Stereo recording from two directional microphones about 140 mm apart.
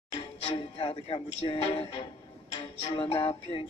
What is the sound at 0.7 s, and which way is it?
Music, 40° left (ahead or behind).